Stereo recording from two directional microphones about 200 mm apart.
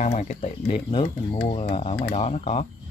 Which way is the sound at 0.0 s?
35° left (ahead or behind).